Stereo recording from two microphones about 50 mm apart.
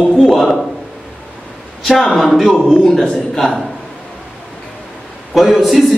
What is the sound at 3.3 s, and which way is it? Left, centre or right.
Speech, centre.